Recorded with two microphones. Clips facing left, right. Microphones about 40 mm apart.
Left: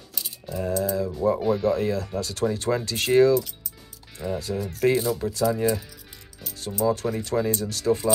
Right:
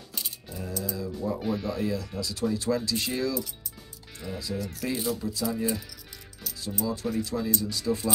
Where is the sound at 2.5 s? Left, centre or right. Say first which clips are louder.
Left 2 dB; left.